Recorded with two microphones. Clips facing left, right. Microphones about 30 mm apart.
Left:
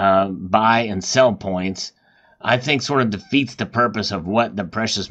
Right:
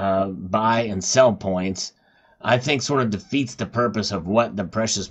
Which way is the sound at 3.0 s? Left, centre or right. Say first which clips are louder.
Left 4 dB; left.